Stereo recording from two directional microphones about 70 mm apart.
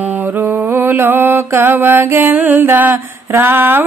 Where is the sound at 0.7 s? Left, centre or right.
Right.